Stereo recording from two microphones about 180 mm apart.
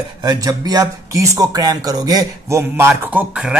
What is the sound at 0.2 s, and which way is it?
Speech, 20° right (ahead or behind).